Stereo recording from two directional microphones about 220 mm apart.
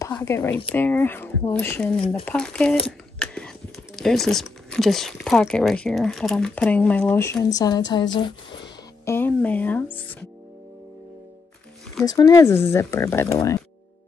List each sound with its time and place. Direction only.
0.0 s a woman's voice: 15° left (ahead or behind)
9.0 s speech: 10° left (ahead or behind)
12.0 s speech: 15° left (ahead or behind)